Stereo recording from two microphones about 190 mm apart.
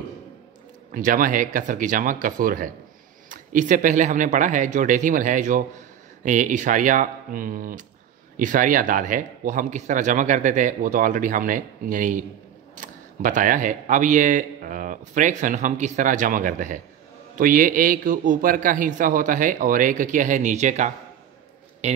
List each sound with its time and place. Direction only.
0.9 s a man's voice: 45° right (ahead or behind)